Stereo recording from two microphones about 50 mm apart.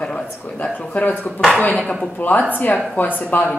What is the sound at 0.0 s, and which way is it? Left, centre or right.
A woman's voice, left.